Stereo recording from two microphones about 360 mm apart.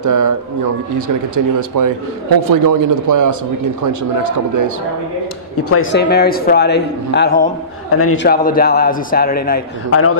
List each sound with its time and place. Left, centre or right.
0.0 s speech: right
5.6 s a man's voice: left
9.8 s a man's voice: left